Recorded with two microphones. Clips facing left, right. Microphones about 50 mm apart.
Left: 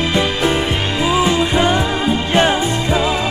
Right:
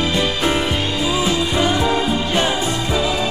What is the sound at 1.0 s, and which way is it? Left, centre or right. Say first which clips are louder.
Music: left 5 dB; left.